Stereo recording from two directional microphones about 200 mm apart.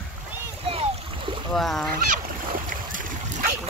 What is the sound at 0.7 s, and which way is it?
Splash, 30° right (ahead or behind).